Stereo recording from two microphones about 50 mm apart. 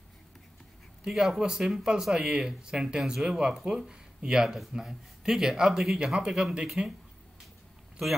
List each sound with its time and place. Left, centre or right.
1.0 s speech: centre